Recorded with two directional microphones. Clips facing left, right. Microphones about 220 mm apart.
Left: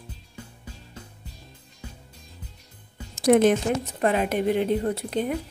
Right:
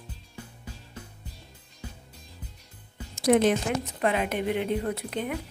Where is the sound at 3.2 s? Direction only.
50° left (ahead or behind).